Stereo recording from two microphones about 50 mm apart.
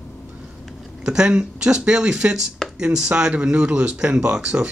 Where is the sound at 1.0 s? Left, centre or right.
Centre.